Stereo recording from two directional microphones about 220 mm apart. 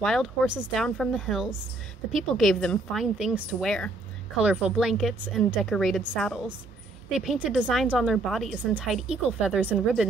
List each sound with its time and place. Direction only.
0.0 s a woman's voice: centre (ahead or behind)